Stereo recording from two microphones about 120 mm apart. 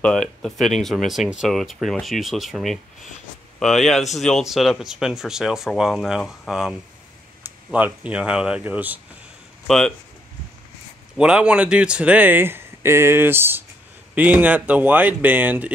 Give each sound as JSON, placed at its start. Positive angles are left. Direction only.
{"t": 0.0, "sound": "speech", "side_deg": 5}
{"t": 7.7, "sound": "speech", "side_deg": -10}
{"t": 9.7, "sound": "speech", "side_deg": 5}
{"t": 11.1, "sound": "speech", "side_deg": -10}